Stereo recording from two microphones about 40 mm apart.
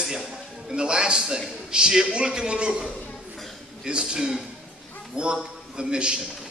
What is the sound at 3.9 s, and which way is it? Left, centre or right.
Speech, right.